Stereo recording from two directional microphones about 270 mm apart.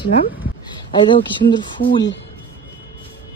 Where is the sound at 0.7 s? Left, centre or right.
Centre.